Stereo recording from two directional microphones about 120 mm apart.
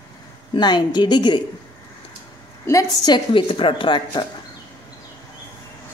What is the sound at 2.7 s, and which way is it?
A woman's voice, 30° left (ahead or behind).